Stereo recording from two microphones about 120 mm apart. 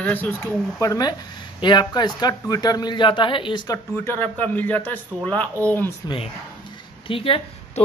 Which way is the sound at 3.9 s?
15° left (ahead or behind).